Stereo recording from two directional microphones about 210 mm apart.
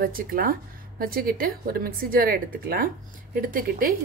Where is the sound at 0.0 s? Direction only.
45° right (ahead or behind).